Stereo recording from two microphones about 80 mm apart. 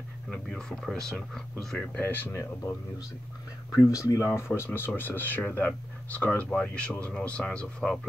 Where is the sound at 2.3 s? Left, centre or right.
Left; by 8.0 s centre.